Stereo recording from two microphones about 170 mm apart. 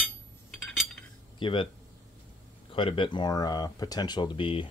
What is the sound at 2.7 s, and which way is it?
Speech, 30° left (ahead or behind).